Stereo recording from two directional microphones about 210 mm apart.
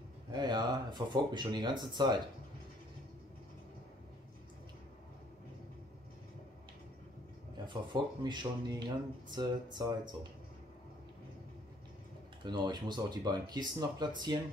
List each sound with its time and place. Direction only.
0.3 s speech: 20° right (ahead or behind)
7.6 s speech: 20° right (ahead or behind)
12.4 s speech: 20° right (ahead or behind)